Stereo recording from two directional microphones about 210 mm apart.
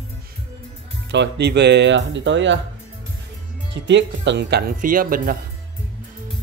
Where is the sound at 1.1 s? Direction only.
55° right (ahead or behind).